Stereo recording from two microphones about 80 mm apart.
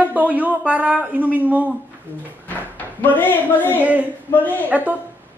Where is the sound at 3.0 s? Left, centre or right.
Left.